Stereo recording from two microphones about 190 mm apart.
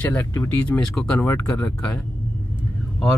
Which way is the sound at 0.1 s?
10° left (ahead or behind).